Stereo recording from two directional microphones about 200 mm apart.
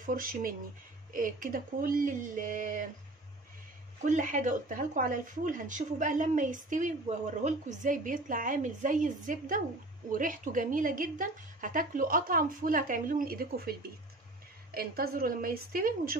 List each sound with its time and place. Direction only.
0.0 s a woman's voice: 45° right (ahead or behind)
4.0 s a woman's voice: 40° right (ahead or behind)